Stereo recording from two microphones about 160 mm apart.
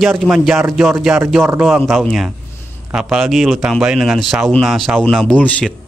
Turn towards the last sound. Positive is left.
turn(degrees=10)  # may be behind; listen again after turning